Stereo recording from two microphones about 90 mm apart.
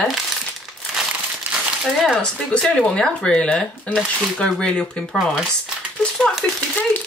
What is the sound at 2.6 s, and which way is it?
Speech, 10° left (ahead or behind).